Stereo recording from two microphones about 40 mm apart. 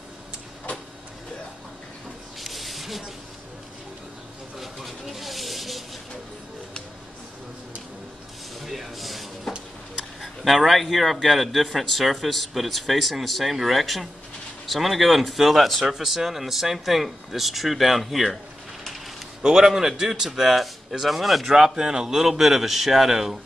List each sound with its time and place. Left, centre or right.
2.4 s spray: centre
4.6 s a sound: centre
8.6 s a sound: centre
10.2 s a man's voice: centre
19.4 s a man's voice: centre
21.5 s speech: centre